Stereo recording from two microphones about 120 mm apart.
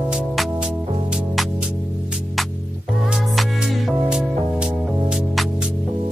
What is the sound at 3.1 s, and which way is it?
Music, centre (ahead or behind).